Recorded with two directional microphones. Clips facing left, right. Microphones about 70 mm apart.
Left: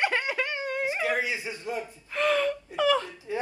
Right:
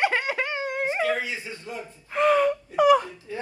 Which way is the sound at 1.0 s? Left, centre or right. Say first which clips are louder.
Right 1 dB; left.